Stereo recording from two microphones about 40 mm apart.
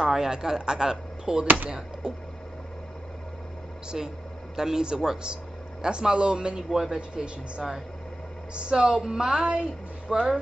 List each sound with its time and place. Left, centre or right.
0.0 s speech: centre
3.9 s speech: centre
6.7 s speech: centre
7.0 s speech: right
10.0 s speech: centre